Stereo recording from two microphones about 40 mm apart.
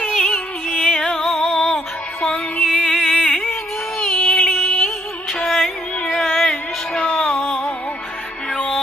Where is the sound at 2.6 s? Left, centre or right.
Centre.